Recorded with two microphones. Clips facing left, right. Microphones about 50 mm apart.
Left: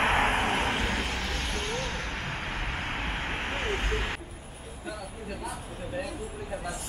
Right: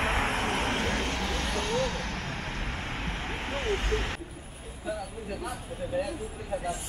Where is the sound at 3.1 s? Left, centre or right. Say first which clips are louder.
Left 2 dB; centre.